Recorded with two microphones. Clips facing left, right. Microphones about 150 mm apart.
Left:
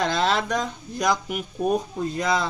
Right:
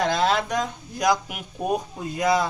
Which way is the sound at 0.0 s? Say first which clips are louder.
Right 1 dB; 10° right (ahead or behind).